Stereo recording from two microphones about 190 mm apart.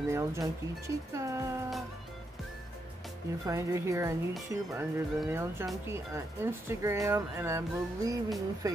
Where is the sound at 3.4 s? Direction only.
15° right (ahead or behind).